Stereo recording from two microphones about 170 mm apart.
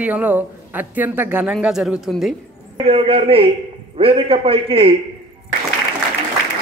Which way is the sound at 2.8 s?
35° right (ahead or behind).